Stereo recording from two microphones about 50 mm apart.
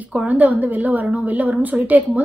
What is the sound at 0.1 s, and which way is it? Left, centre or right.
A woman's voice, right.